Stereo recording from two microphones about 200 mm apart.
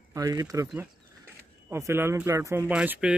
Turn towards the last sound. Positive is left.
turn(degrees=-5)  # may be behind; listen again after turning